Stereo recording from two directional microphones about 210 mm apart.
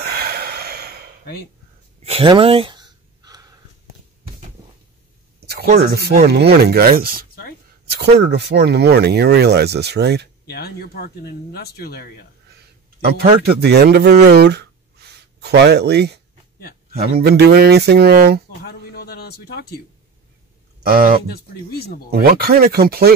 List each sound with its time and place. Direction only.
0.0 s snort: 50° right (ahead or behind)
2.0 s a sound: 25° right (ahead or behind)
5.8 s speech: 50° right (ahead or behind)
10.4 s speech: 50° left (ahead or behind)
13.6 s speech: 50° right (ahead or behind)
14.2 s a sound: 50° right (ahead or behind)
16.9 s speech: 50° right (ahead or behind)
18.6 s a man's voice: 50° left (ahead or behind)
20.8 s speech: 45° right (ahead or behind)
21.3 s speech: 50° left (ahead or behind)
22.1 s speech: 45° right (ahead or behind)